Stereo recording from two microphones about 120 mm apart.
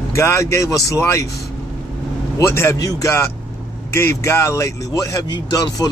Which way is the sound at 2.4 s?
20° left (ahead or behind).